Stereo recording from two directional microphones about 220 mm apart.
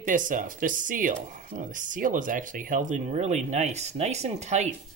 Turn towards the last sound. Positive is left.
turn(degrees=-30)  # may be behind; listen again after turning